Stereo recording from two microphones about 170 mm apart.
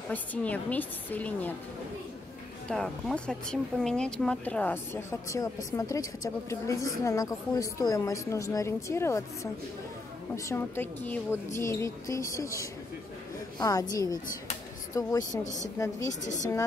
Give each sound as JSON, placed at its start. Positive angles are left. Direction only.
{"t": 0.1, "sound": "speech", "side_deg": 10}
{"t": 2.7, "sound": "a woman's voice", "side_deg": 5}
{"t": 15.4, "sound": "a woman's voice", "side_deg": 45}
{"t": 15.8, "sound": "speech", "side_deg": 20}